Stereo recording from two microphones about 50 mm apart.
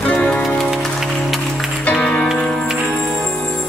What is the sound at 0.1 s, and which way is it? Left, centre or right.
Music, centre.